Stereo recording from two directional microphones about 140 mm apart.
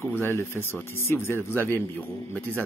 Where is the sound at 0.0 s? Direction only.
15° left (ahead or behind).